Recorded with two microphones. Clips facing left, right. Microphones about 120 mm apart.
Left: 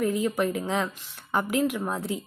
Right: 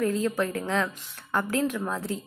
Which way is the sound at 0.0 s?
15° left (ahead or behind).